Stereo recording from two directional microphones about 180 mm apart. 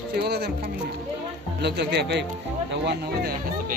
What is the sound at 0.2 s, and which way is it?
Speech, 60° right (ahead or behind).